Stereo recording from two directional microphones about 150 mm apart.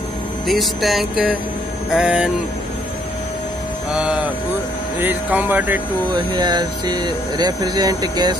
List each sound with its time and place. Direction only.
0.5 s music: centre (ahead or behind)
3.9 s speech: 5° right (ahead or behind)
6.3 s speech: 30° right (ahead or behind)